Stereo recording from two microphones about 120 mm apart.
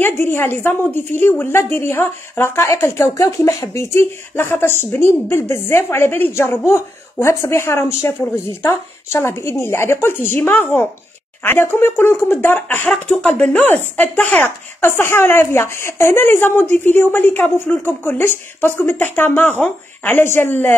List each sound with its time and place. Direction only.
0.0 s a woman's voice: 20° left (ahead or behind)